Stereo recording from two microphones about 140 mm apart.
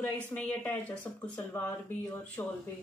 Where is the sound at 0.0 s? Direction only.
10° left (ahead or behind).